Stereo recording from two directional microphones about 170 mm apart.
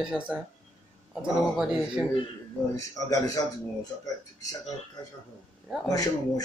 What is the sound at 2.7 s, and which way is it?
Speech, 20° left (ahead or behind).